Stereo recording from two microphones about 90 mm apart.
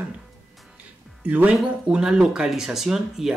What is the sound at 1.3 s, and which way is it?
Speech, 15° right (ahead or behind).